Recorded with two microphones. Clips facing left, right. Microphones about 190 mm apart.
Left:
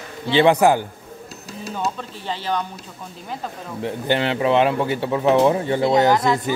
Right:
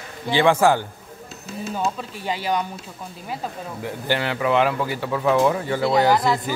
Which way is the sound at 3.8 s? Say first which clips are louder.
Left 4 dB; 25° left (ahead or behind).